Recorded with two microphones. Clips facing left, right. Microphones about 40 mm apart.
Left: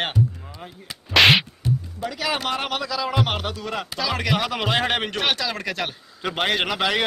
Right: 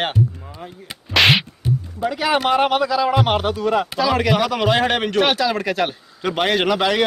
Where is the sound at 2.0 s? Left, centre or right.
Centre.